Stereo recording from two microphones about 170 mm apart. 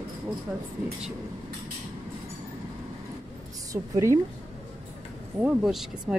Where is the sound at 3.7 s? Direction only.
20° right (ahead or behind).